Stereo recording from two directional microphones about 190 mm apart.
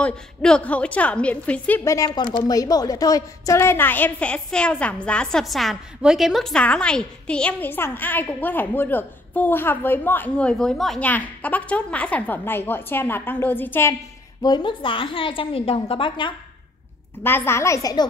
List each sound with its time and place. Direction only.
0.0 s a woman's voice: 5° left (ahead or behind)
14.4 s a woman's voice: 25° left (ahead or behind)
17.2 s a woman's voice: 10° left (ahead or behind)